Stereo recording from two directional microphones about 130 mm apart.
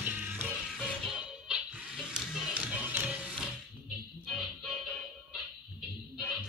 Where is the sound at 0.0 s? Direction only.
15° right (ahead or behind).